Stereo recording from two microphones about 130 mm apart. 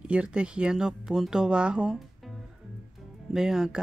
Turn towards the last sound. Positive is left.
turn(degrees=-5)  # may be behind; listen again after turning